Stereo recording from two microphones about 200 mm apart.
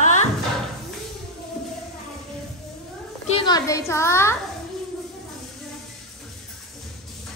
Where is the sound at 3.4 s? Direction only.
20° left (ahead or behind).